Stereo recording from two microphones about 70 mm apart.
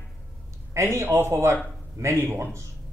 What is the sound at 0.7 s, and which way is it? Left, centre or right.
A man's voice, right.